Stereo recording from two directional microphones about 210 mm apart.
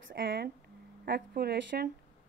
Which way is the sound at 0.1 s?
55° right (ahead or behind).